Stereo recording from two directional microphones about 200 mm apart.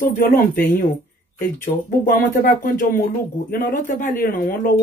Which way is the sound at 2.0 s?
45° left (ahead or behind).